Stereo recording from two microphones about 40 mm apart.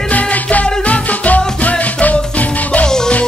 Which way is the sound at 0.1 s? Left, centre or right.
Left.